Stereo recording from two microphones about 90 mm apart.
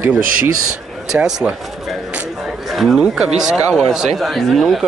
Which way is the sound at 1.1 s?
5° right (ahead or behind).